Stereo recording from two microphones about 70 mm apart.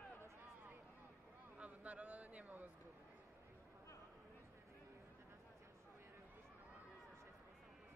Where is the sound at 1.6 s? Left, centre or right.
Centre.